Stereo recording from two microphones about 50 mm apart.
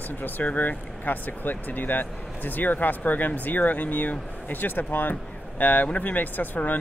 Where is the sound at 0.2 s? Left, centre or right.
Left.